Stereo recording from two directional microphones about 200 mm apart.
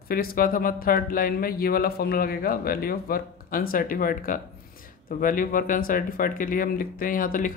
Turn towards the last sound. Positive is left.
turn(degrees=45)  # may be behind; listen again after turning